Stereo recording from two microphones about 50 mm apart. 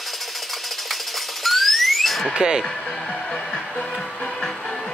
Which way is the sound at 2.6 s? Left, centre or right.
Centre.